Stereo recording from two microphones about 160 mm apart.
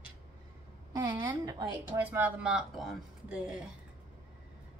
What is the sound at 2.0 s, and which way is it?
Speech, 10° right (ahead or behind).